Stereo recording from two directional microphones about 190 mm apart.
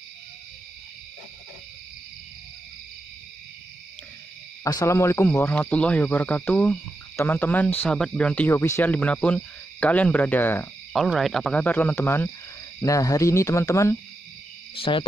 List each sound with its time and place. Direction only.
4.6 s speech: 15° left (ahead or behind)
14.8 s cricket: 25° left (ahead or behind)